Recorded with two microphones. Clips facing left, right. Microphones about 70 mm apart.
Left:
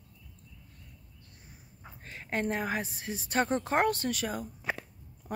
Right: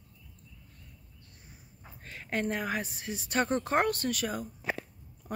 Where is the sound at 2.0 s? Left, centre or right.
Left.